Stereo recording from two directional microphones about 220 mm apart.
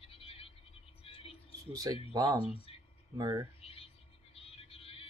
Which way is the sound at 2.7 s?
25° left (ahead or behind).